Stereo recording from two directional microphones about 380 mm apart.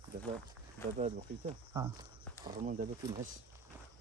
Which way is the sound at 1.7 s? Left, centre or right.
Centre.